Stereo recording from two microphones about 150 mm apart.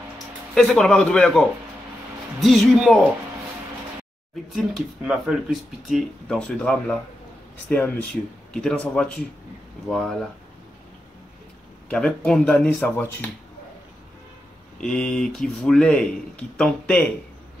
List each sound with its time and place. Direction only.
0.6 s speech: 5° left (ahead or behind)
4.5 s speech: centre (ahead or behind)
11.9 s speech: 5° left (ahead or behind)
14.8 s speech: 5° left (ahead or behind)